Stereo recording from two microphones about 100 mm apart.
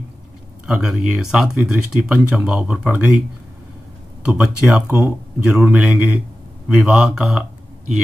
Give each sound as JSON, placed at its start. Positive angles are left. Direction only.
{"t": 0.7, "sound": "speech", "side_deg": -5}
{"t": 4.3, "sound": "speech", "side_deg": -10}
{"t": 4.9, "sound": "speech", "side_deg": -20}
{"t": 5.6, "sound": "speech", "side_deg": -10}